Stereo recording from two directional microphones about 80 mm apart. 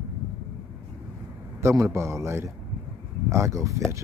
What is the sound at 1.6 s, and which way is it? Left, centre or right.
A man's voice, right.